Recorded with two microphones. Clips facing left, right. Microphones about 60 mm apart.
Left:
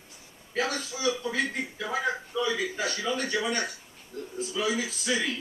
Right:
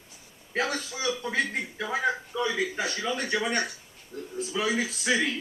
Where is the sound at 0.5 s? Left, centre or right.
Right.